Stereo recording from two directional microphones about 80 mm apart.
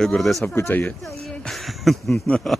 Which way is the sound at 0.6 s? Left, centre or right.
Left.